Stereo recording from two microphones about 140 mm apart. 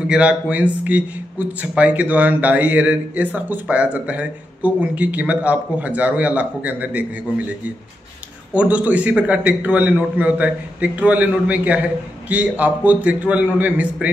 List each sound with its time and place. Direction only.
0.0 s a man's voice: 5° right (ahead or behind)
8.5 s a man's voice: 10° right (ahead or behind)